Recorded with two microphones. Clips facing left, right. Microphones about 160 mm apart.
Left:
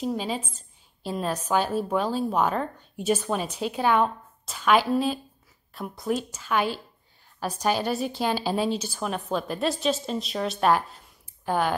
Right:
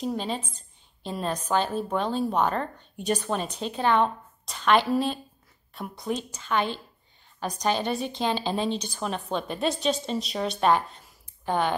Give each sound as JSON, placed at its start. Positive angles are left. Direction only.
{"t": 0.0, "sound": "a woman's voice", "side_deg": 5}